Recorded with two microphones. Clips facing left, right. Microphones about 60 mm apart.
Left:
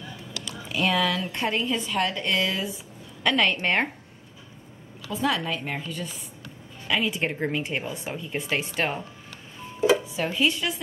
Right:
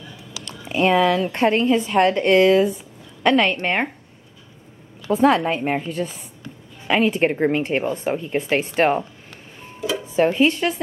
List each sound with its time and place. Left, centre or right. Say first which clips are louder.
0.7 s speech: right 7 dB; right
1.3 s a woman's voice: right 9 dB; right
3.6 s speech: right 2 dB; centre
5.0 s a woman's voice: right 10 dB; right
5.5 s speech: right 8 dB; right
7.6 s speech: right 9 dB; right
9.8 s music: left 5 dB; left
10.1 s speech: right 8 dB; right